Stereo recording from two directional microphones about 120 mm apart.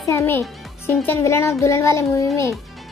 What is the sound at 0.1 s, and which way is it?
A child's voice, 20° left (ahead or behind).